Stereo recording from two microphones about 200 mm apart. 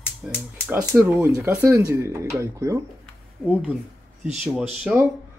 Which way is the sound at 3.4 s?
5° right (ahead or behind).